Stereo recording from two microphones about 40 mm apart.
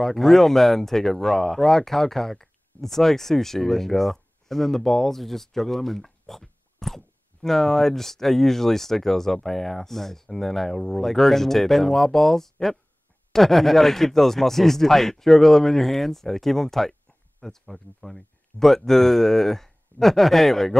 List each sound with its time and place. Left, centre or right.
0.0 s speech: centre